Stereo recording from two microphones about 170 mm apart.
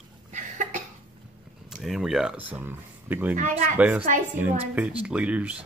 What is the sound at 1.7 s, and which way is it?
Speech, centre (ahead or behind).